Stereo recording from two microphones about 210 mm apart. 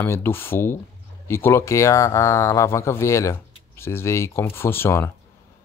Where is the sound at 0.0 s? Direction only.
10° left (ahead or behind).